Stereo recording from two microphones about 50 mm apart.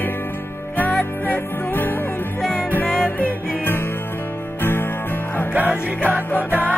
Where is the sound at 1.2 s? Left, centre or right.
Left.